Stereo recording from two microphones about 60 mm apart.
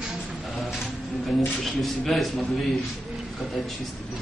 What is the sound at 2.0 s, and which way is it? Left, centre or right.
Speech, centre.